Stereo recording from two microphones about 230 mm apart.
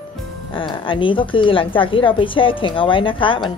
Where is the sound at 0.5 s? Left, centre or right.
Left.